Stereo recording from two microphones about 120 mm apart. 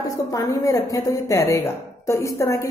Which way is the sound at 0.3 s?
30° left (ahead or behind).